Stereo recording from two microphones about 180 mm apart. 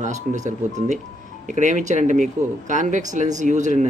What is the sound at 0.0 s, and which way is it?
Speech, 40° right (ahead or behind).